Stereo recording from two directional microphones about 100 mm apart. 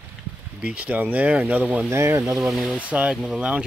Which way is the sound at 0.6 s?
15° right (ahead or behind).